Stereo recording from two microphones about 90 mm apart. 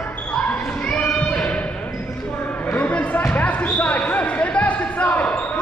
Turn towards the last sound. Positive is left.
turn(degrees=15)  # may be behind; listen again after turning